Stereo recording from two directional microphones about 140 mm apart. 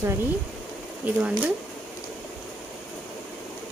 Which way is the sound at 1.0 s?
10° right (ahead or behind).